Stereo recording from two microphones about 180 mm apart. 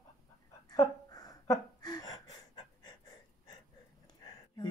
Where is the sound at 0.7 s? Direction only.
20° left (ahead or behind).